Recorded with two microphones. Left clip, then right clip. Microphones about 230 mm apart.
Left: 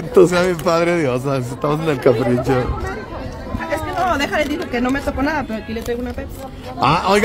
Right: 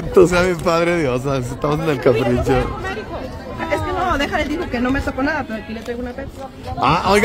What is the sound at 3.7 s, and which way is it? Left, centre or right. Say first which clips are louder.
Speech: even; left.